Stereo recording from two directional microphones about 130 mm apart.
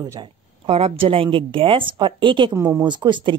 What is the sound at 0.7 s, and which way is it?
Speech, 50° right (ahead or behind).